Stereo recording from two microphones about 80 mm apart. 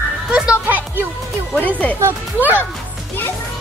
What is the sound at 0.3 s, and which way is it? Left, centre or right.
Music, centre.